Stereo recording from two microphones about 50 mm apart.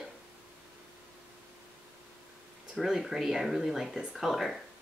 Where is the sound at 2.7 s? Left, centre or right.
Centre.